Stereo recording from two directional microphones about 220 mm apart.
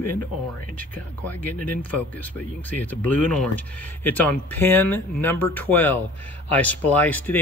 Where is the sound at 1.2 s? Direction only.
10° left (ahead or behind).